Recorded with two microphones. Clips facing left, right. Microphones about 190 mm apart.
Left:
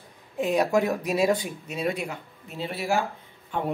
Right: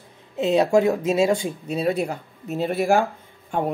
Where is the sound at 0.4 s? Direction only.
25° right (ahead or behind).